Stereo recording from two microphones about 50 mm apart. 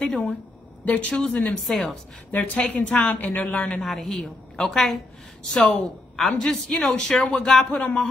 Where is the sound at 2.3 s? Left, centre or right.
Left.